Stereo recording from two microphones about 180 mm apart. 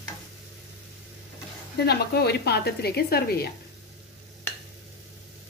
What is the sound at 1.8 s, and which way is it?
Speech, 60° left (ahead or behind).